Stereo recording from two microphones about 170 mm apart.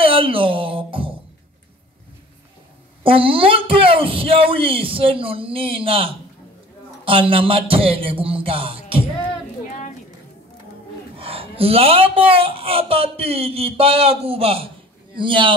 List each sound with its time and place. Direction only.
0.0 s music: 30° right (ahead or behind)
3.0 s speech: 30° right (ahead or behind)
11.1 s a man's voice: 35° right (ahead or behind)